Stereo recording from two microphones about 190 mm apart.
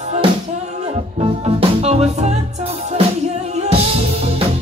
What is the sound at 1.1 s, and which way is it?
Music, 30° right (ahead or behind).